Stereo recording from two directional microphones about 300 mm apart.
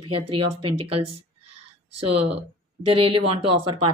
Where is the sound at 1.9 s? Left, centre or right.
Right.